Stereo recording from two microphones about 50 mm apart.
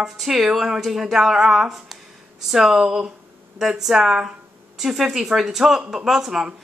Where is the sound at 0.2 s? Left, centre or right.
Centre.